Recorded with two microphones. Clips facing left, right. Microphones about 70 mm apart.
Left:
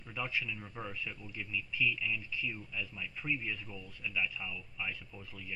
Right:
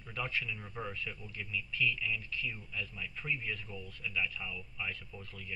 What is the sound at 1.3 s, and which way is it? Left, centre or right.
Speech, centre.